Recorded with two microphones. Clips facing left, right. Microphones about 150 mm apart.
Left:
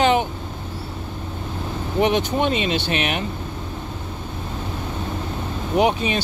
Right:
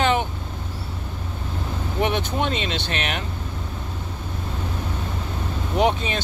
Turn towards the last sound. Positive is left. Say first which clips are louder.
# left 2 dB
turn(degrees=15)  # may be behind; listen again after turning